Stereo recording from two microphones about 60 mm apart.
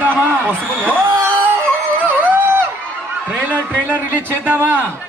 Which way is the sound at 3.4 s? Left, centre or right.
Right.